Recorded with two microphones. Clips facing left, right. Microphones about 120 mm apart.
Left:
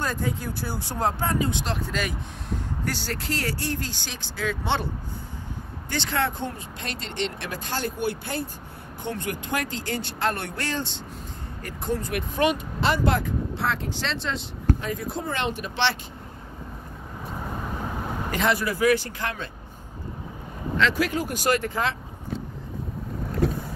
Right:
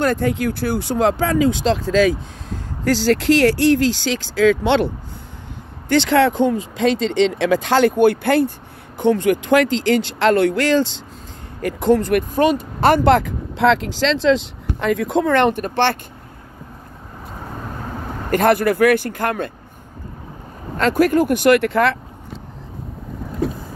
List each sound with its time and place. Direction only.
0.0 s speech: 70° right (ahead or behind)
12.4 s speech: 35° right (ahead or behind)
12.8 s speech: 60° right (ahead or behind)
18.3 s speech: 55° right (ahead or behind)
20.7 s speech: 50° right (ahead or behind); by 21.9 s 65° right (ahead or behind)